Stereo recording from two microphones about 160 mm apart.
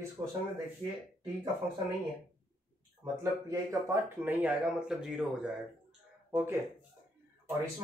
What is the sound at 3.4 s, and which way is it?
Speech, 15° right (ahead or behind).